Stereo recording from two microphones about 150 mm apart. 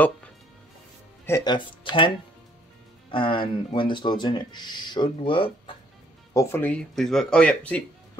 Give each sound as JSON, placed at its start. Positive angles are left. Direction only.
{"t": 1.4, "sound": "speech", "side_deg": 30}
{"t": 6.3, "sound": "speech", "side_deg": 15}